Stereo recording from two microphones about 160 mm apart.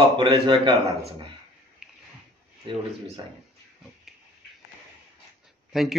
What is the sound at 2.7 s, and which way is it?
Speech, 30° right (ahead or behind).